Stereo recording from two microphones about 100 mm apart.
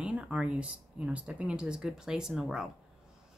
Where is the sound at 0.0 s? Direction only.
10° right (ahead or behind).